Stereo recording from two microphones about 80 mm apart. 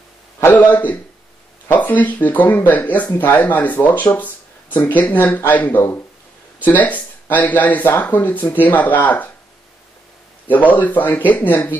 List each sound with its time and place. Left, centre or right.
0.5 s speech: centre
10.5 s speech: left